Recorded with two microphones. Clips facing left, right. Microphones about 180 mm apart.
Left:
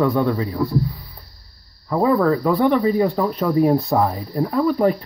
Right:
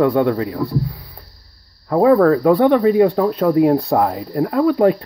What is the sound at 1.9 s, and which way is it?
Speech, 55° right (ahead or behind).